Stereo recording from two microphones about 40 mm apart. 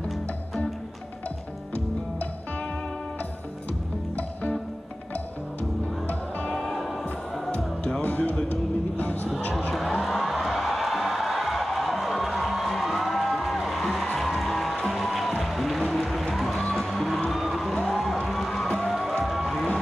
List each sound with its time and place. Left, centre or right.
4.2 s music: left
6.5 s music: centre
8.0 s music: left
9.8 s music: centre
15.8 s a sound: centre
16.7 s music: centre